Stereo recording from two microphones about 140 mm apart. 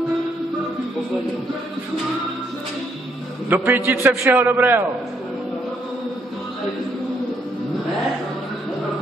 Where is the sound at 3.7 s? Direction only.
15° right (ahead or behind).